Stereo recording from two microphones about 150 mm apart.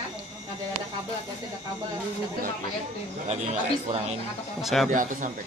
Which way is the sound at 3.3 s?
45° right (ahead or behind).